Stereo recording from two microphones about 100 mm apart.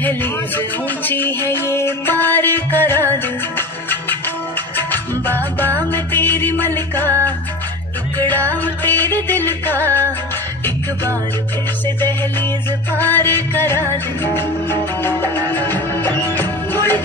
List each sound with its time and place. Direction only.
0.0 s music: 20° left (ahead or behind)
8.2 s music: 20° left (ahead or behind)
12.0 s music: 20° left (ahead or behind)